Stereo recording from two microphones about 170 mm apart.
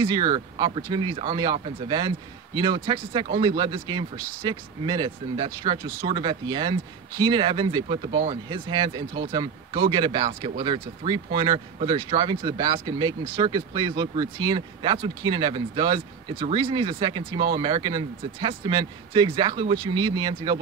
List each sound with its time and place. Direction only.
0.0 s speech: 25° right (ahead or behind)